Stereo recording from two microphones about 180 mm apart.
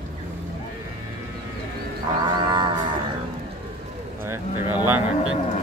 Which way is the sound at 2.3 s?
25° right (ahead or behind).